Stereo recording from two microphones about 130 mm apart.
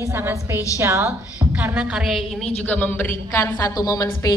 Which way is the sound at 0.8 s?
20° right (ahead or behind).